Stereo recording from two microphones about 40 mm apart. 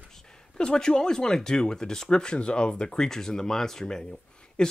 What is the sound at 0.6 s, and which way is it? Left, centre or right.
Speech, centre.